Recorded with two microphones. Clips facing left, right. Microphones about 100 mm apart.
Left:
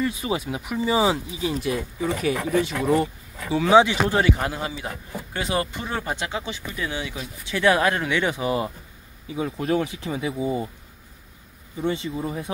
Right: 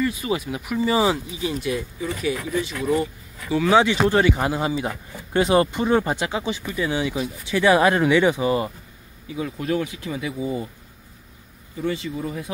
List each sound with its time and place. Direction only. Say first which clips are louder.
0.0 s speech: right 1 dB; 20° left (ahead or behind)
0.8 s speech: right 1 dB; 10° left (ahead or behind)
1.1 s speech: even; 25° left (ahead or behind)
1.6 s speech: even; 40° left (ahead or behind)
2.5 s speech: left 3 dB; 60° left (ahead or behind)
2.8 s speech: right 1 dB; 40° left (ahead or behind)
3.4 s speech: right 2 dB; 25° left (ahead or behind)
3.7 s speech: left 1 dB; 10° left (ahead or behind)
4.4 s speech: right 5 dB; 15° right (ahead or behind); by 8.7 s 5° left (ahead or behind)
9.3 s speech: left 1 dB; 30° left (ahead or behind)
11.8 s speech: even; 25° left (ahead or behind)